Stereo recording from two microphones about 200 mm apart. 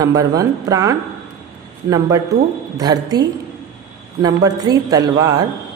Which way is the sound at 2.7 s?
20° right (ahead or behind).